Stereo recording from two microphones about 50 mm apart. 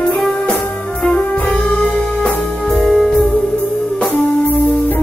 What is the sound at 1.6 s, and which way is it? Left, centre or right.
Music, centre.